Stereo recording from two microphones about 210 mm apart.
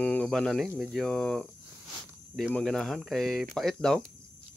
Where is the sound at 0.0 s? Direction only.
5° left (ahead or behind).